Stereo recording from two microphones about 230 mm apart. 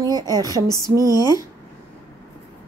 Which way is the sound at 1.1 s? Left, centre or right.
Centre.